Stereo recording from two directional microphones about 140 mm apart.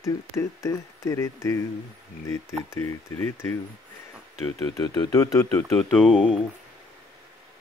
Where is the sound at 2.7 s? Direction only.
15° left (ahead or behind).